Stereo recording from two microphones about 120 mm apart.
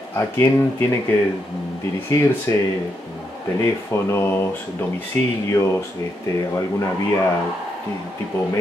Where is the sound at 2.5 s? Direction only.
30° left (ahead or behind).